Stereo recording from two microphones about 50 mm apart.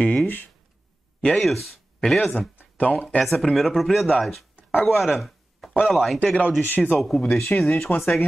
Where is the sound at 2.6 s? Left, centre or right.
Left.